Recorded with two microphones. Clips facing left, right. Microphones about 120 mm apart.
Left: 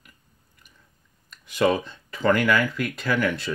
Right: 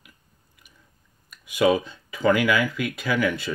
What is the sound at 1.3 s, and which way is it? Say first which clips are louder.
Speech: right 1 dB; 5° right (ahead or behind).